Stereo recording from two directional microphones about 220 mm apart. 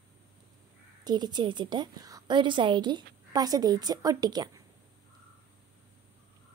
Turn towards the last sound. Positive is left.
turn(degrees=-20)  # may be behind; listen again after turning